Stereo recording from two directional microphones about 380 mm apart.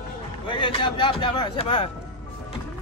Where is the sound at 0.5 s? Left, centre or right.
Centre.